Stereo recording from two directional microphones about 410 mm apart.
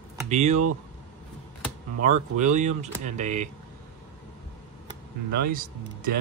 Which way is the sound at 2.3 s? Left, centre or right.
Centre.